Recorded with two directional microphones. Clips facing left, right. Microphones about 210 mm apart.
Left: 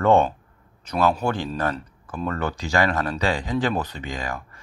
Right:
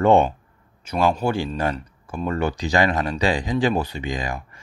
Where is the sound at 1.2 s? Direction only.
10° right (ahead or behind).